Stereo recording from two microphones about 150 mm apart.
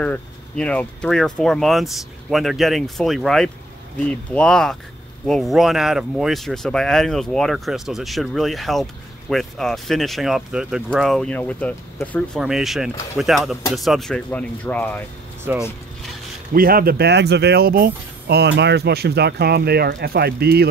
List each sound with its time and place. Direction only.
0.0 s speech: 5° left (ahead or behind)
12.4 s speech: centre (ahead or behind)
15.5 s speech: 15° right (ahead or behind)
16.5 s speech: 80° right